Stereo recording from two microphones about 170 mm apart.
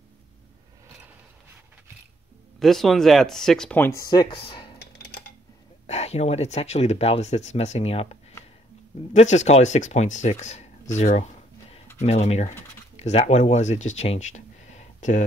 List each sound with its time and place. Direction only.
2.6 s speech: centre (ahead or behind); by 4.7 s 30° left (ahead or behind)
4.7 s a sound: 70° left (ahead or behind)
5.9 s speech: 40° left (ahead or behind)